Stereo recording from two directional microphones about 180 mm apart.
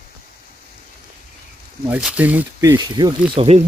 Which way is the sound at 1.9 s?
5° right (ahead or behind).